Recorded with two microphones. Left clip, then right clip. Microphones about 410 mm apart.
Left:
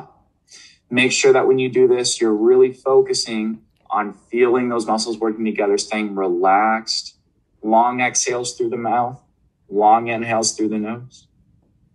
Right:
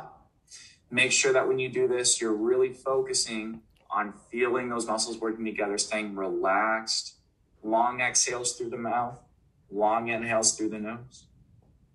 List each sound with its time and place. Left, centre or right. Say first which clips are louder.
0.5 s speech: left 12 dB; left